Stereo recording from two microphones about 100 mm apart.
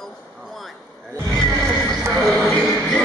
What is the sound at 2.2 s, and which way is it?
Speech, centre (ahead or behind).